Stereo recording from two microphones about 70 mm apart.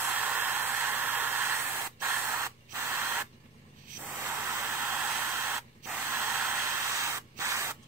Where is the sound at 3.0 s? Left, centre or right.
Right.